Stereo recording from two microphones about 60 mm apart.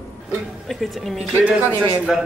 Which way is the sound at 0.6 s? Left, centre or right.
Centre.